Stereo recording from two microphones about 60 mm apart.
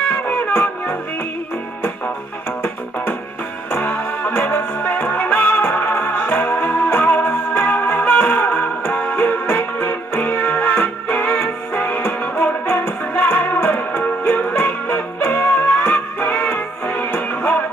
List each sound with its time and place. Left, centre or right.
0.1 s music: left
3.7 s music: left